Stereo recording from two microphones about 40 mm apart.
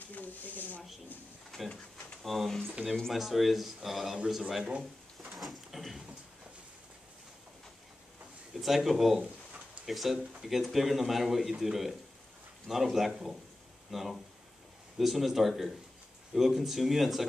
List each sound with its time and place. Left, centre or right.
0.1 s speech: left
1.5 s speech: centre
2.2 s speech: centre
5.2 s a sound: centre
8.5 s speech: centre